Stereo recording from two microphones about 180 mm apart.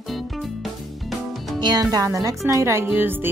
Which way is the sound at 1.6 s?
20° right (ahead or behind).